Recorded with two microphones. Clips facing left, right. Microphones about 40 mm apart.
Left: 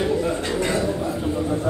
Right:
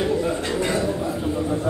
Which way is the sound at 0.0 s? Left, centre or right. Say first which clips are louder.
Even; centre.